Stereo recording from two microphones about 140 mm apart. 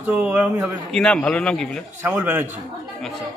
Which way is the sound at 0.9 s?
5° left (ahead or behind).